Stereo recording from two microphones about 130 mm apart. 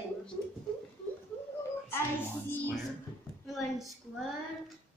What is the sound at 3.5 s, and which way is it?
Speech, centre (ahead or behind).